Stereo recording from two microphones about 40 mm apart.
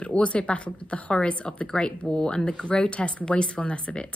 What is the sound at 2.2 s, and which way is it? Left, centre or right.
Speech, centre.